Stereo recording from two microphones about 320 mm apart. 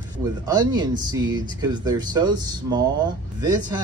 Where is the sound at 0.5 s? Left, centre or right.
Centre.